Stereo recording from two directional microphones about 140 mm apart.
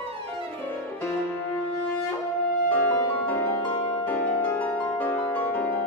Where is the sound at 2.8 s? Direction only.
15° left (ahead or behind).